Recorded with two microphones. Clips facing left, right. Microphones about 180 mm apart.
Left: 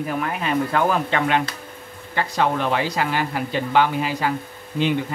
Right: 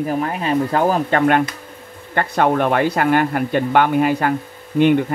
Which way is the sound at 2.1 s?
55° right (ahead or behind).